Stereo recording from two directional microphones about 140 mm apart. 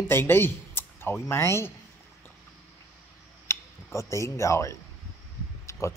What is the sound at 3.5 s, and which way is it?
Speech, 20° left (ahead or behind).